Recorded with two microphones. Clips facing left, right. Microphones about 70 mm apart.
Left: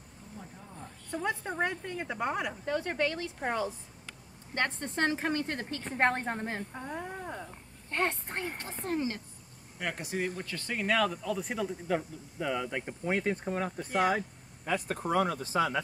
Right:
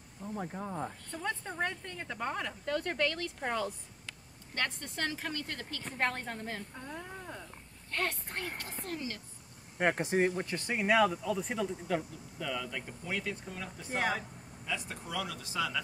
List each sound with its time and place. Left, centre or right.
0.4 s speech: right
1.1 s a woman's voice: centre
4.6 s a woman's voice: left
9.8 s speech: right; by 12.0 s centre
12.4 s speech: left